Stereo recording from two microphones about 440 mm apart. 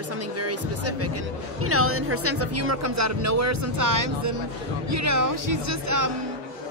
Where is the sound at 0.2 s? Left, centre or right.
Right.